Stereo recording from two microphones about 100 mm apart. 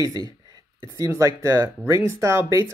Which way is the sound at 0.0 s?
40° right (ahead or behind).